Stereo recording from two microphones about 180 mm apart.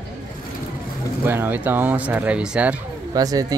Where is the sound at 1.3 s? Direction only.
10° right (ahead or behind).